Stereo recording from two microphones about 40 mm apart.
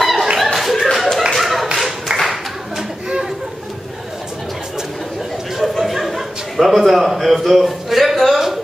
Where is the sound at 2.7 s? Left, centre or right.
Centre.